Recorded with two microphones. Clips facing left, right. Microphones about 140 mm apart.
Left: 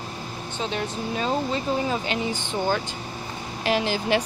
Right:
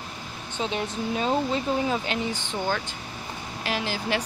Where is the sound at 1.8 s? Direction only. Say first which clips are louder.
Left 1 dB; centre (ahead or behind).